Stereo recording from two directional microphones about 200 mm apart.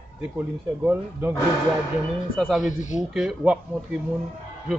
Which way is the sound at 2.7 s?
40° left (ahead or behind).